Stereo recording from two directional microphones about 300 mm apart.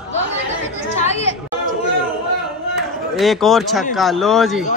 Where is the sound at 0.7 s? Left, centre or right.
Left.